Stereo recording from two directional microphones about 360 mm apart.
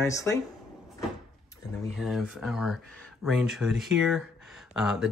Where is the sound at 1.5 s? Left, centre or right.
Centre.